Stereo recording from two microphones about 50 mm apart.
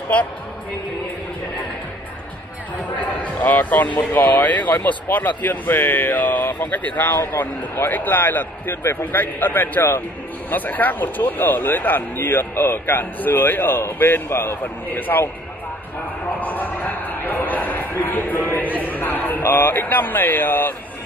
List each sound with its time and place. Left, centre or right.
0.1 s speech: left
3.3 s speech: left
7.3 s speech: left
16.3 s a sound: left